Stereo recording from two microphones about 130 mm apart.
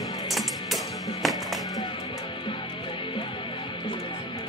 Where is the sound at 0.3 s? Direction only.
Centre (ahead or behind).